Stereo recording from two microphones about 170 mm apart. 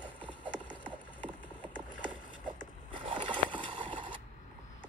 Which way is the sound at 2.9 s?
30° right (ahead or behind).